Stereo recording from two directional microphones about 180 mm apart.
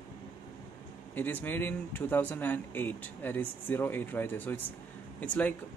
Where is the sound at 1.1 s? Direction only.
10° left (ahead or behind).